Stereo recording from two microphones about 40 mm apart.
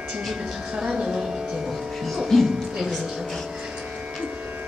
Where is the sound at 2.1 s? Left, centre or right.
Centre.